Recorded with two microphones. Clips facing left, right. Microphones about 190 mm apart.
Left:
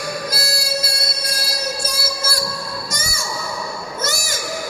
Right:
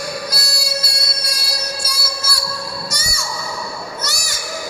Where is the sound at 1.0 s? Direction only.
50° left (ahead or behind).